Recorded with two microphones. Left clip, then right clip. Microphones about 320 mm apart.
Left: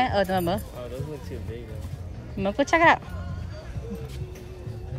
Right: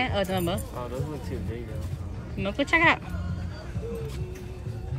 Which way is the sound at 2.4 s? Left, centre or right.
Left.